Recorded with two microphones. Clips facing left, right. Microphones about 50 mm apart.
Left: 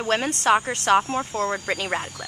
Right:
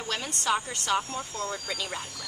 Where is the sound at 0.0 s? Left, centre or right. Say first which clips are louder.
Left 9 dB; left.